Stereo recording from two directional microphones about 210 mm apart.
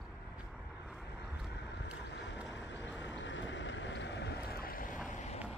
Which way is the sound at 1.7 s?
55° left (ahead or behind).